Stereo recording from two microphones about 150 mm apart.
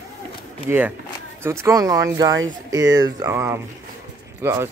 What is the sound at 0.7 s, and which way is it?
Speech, 15° right (ahead or behind).